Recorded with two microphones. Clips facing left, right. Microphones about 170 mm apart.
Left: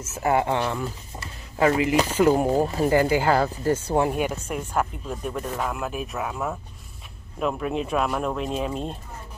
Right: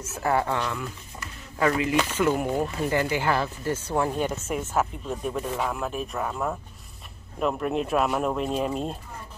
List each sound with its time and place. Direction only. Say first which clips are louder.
0.2 s speech: left 3 dB; 20° left (ahead or behind)
4.0 s speech: left 2 dB; 15° left (ahead or behind)
4.3 s speech: even; 5° right (ahead or behind)